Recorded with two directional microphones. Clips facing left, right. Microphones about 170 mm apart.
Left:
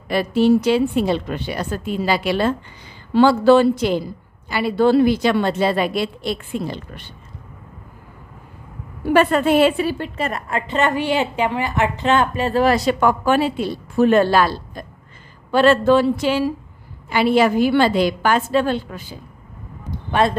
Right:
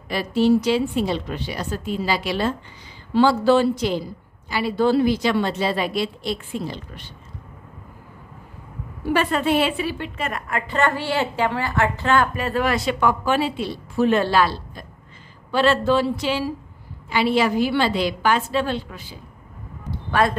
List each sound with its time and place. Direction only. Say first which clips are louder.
0.1 s a woman's voice: left 3 dB; 55° left (ahead or behind)
9.0 s a woman's voice: left 5 dB; 50° left (ahead or behind)
20.1 s speech: left 2 dB; 25° left (ahead or behind)